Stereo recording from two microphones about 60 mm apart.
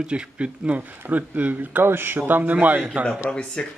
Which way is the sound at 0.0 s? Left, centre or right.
Centre.